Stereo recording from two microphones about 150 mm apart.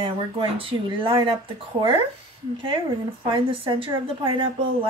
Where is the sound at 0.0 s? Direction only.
35° right (ahead or behind).